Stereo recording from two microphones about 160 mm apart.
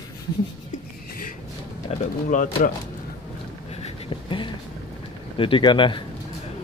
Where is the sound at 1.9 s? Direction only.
40° left (ahead or behind).